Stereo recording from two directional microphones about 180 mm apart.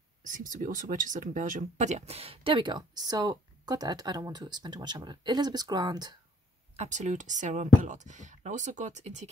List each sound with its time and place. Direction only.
0.2 s speech: 45° right (ahead or behind); by 6.1 s 20° right (ahead or behind)
6.8 s speech: 40° right (ahead or behind)